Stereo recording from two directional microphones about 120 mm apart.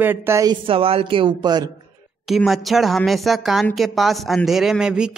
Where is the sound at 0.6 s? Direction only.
50° right (ahead or behind).